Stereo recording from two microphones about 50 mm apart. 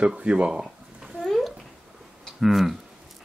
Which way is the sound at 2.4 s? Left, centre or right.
Centre.